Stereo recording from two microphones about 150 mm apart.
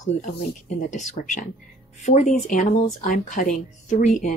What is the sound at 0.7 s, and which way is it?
Speech, 55° left (ahead or behind).